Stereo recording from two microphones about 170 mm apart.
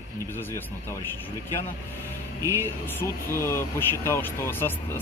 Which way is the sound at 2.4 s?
15° left (ahead or behind).